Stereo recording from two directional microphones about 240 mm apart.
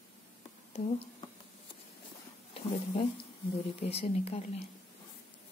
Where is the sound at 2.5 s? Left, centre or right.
Left.